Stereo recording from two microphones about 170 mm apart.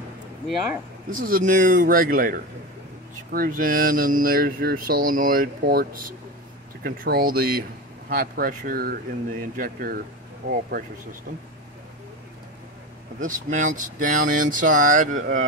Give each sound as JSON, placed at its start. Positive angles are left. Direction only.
{"t": 1.1, "sound": "speech", "side_deg": -50}
{"t": 13.2, "sound": "speech", "side_deg": -50}